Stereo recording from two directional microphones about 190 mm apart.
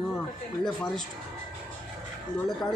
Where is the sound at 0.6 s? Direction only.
Centre (ahead or behind).